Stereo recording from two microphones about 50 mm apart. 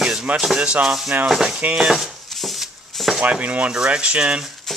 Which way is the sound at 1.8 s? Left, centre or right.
Centre.